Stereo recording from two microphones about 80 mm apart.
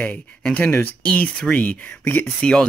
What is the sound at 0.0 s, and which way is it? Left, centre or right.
Speech, centre.